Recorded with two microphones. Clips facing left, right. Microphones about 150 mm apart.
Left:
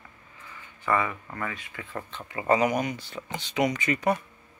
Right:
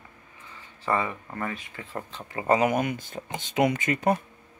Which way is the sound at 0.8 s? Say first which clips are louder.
Even; 25° right (ahead or behind).